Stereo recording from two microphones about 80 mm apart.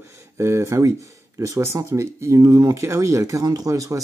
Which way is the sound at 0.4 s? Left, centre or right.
Right.